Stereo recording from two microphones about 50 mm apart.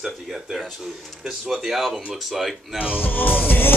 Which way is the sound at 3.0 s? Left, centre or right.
Left.